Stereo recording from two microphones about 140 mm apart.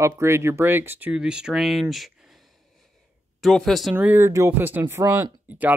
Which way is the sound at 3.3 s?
Centre (ahead or behind).